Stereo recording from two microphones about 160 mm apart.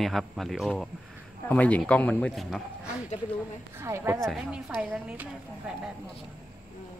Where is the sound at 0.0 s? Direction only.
Centre (ahead or behind).